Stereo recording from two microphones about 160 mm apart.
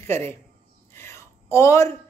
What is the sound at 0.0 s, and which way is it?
A man's voice, 15° left (ahead or behind).